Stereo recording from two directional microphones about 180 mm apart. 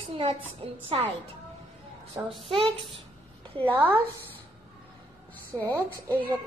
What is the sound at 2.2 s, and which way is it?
Speech, 10° right (ahead or behind).